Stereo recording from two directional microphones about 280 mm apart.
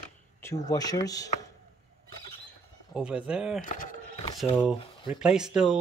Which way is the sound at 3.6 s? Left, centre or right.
Left.